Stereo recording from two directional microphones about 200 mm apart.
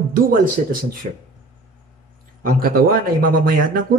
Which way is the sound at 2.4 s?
45° right (ahead or behind).